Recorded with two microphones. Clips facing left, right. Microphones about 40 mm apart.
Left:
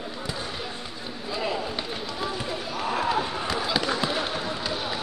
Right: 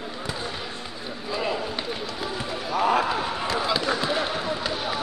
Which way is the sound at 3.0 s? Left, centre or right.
Centre.